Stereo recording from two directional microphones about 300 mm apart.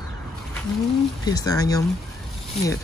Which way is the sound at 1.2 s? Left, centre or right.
Centre.